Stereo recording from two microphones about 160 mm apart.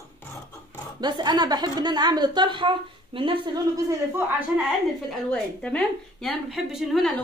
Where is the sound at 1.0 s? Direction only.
25° right (ahead or behind).